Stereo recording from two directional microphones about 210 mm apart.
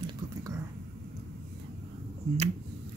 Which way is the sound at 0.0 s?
15° right (ahead or behind).